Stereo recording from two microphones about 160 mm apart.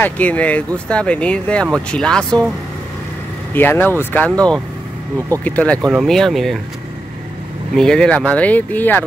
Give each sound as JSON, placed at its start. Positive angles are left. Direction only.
{"t": 0.0, "sound": "speech", "side_deg": 10}
{"t": 3.5, "sound": "speech", "side_deg": 10}
{"t": 7.7, "sound": "speech", "side_deg": 5}